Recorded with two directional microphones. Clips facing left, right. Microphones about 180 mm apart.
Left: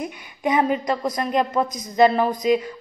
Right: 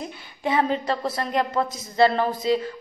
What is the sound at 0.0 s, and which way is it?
A woman's voice, 15° left (ahead or behind).